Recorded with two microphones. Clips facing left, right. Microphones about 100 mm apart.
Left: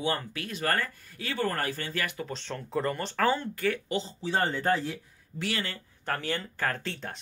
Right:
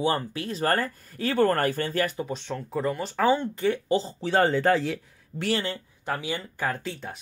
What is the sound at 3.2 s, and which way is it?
Speech, 15° right (ahead or behind).